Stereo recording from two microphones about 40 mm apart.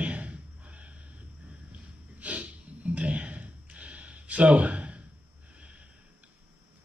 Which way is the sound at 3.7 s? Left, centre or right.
Right.